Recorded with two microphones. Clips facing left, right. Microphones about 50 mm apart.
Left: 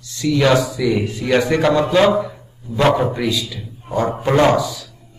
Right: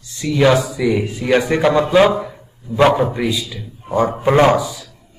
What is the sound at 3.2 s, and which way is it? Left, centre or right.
A man's voice, right.